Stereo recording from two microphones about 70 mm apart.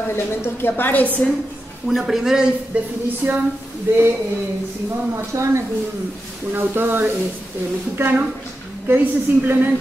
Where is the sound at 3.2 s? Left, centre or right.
Right.